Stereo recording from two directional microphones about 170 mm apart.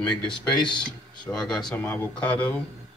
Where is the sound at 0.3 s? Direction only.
25° left (ahead or behind).